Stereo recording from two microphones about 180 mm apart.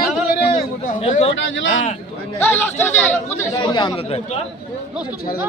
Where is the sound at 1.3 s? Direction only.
90° left.